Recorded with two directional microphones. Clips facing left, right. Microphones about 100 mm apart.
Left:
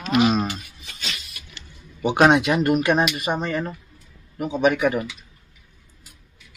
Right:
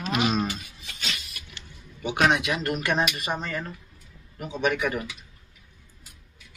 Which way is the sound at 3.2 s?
30° left (ahead or behind).